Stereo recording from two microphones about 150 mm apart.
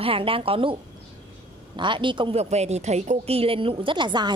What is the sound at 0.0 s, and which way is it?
Speech, 40° right (ahead or behind).